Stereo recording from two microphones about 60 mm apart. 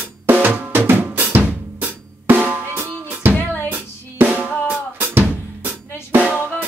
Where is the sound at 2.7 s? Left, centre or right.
Right.